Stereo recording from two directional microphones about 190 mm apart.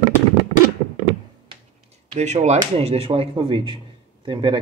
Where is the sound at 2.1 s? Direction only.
35° right (ahead or behind).